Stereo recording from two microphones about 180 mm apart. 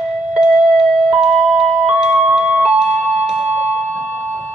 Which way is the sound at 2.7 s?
5° right (ahead or behind).